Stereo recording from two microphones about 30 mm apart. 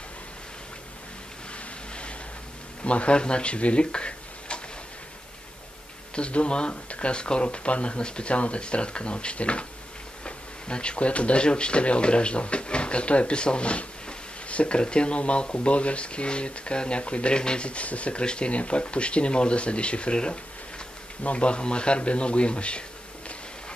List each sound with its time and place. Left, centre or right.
1.5 s a sound: left
2.8 s speech: left
6.1 s speech: left
18.2 s speech: left
18.5 s a man's voice: left